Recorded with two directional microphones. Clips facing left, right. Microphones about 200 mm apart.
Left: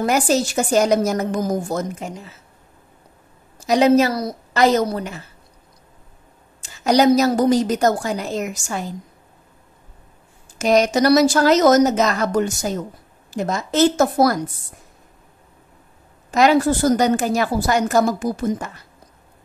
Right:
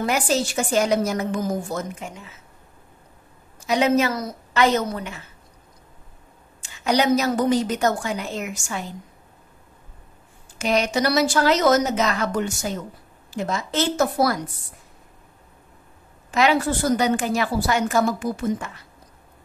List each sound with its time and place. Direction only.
0.0 s a woman's voice: 40° left (ahead or behind)
3.5 s a woman's voice: 40° left (ahead or behind)
6.6 s a woman's voice: 40° left (ahead or behind)
10.6 s a woman's voice: 40° left (ahead or behind)
16.3 s a woman's voice: 40° left (ahead or behind)